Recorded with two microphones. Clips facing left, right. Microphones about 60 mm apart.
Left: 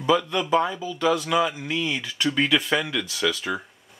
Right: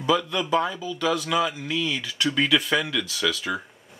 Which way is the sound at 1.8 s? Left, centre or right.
Centre.